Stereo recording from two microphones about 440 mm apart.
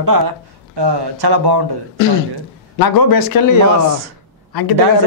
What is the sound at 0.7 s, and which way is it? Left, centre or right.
Speech, right.